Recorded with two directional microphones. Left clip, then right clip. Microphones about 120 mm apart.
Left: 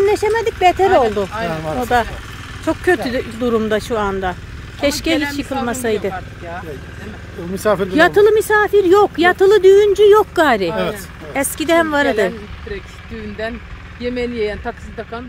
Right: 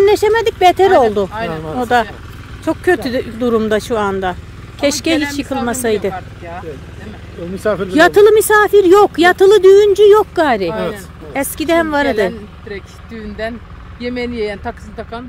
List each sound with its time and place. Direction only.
0.0 s speech: 40° right (ahead or behind)
1.8 s speech: 20° right (ahead or behind)
2.6 s speech: 10° right (ahead or behind)
7.9 s speech: 25° right (ahead or behind)
10.1 s speech: centre (ahead or behind)
13.4 s speech: 75° right (ahead or behind)